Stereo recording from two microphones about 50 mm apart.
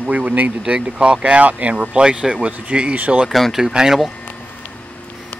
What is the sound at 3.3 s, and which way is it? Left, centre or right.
Speech, centre.